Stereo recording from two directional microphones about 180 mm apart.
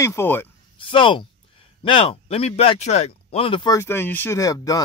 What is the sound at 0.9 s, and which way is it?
A man's voice, 30° left (ahead or behind).